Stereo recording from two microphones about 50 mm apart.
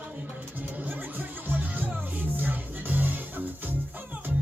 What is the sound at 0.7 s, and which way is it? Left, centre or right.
Music, right.